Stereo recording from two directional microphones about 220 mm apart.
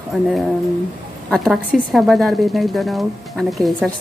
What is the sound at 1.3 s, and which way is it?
Speech, 5° left (ahead or behind).